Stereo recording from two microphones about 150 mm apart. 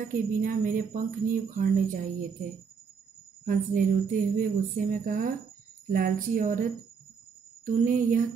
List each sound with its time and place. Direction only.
0.1 s speech: 60° right (ahead or behind)
3.4 s music: 60° right (ahead or behind)
5.9 s speech: 65° right (ahead or behind)